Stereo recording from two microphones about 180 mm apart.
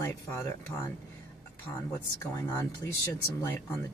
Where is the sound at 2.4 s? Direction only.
15° left (ahead or behind).